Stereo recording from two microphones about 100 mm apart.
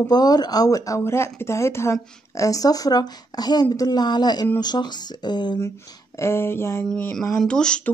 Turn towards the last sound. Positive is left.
turn(degrees=10)  # may be behind; listen again after turning